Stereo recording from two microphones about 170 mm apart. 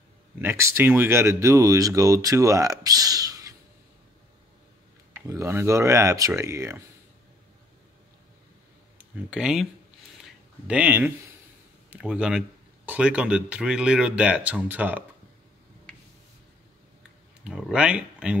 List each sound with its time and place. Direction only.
0.4 s speech: 15° right (ahead or behind)
5.1 s speech: 15° right (ahead or behind)
8.9 s speech: 5° right (ahead or behind)
10.7 s speech: 10° right (ahead or behind)
17.5 s speech: 5° right (ahead or behind)